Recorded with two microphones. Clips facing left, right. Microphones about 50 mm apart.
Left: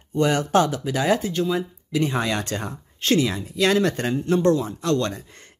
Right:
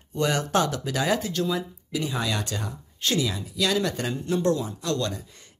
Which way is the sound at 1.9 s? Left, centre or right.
Left.